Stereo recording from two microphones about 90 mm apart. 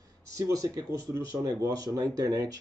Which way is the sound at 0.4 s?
40° right (ahead or behind).